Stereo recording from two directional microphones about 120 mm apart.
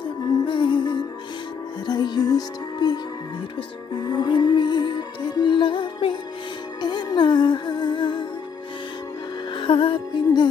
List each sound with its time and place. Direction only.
0.5 s music: 45° left (ahead or behind)
9.6 s music: 45° left (ahead or behind)